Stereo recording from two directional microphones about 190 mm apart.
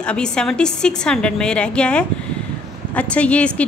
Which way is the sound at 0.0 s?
5° left (ahead or behind).